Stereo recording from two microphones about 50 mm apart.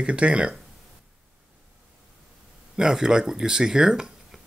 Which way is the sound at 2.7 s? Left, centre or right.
Centre.